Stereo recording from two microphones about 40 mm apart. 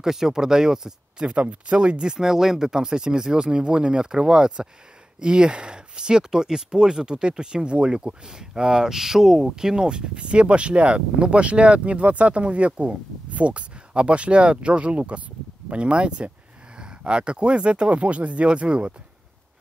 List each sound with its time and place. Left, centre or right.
0.0 s speech: centre
1.3 s speech: right
2.1 s speech: centre
3.5 s speech: right